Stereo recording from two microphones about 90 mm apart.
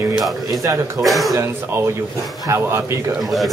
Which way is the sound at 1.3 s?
30° right (ahead or behind).